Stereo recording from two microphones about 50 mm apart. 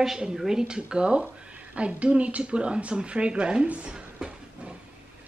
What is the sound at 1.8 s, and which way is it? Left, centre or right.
A woman's voice, right.